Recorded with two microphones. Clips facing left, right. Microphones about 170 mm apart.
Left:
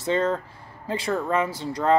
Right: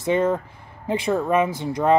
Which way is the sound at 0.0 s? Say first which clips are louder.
Right 3 dB; 15° right (ahead or behind).